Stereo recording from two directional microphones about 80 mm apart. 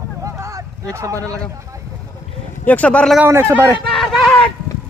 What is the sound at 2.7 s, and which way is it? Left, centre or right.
Speech, centre.